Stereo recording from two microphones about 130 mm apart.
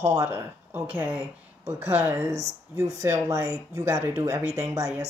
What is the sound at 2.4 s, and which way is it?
Speech, 25° right (ahead or behind).